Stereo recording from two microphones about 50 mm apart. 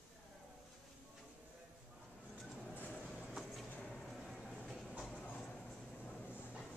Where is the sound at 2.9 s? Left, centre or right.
Centre.